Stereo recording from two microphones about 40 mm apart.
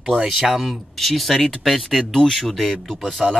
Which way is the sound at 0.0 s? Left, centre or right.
Centre.